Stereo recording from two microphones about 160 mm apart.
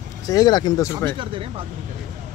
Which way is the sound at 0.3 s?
25° left (ahead or behind).